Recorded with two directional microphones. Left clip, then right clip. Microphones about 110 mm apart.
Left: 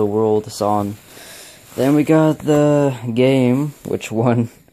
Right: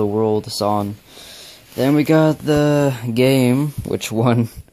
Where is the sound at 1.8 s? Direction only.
Centre (ahead or behind).